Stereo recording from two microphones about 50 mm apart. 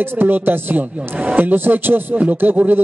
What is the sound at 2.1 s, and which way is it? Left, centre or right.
Speech, right.